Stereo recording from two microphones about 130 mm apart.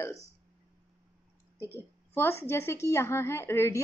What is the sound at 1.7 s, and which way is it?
A woman's voice, 15° left (ahead or behind).